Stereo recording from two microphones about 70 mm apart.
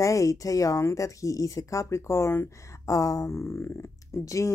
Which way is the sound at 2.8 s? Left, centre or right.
Left.